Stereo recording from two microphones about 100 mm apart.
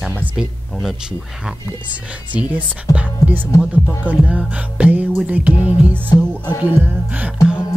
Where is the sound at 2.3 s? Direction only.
15° right (ahead or behind).